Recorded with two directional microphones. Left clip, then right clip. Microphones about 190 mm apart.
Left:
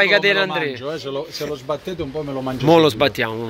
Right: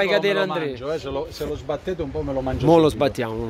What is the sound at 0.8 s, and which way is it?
Speech, 50° left (ahead or behind).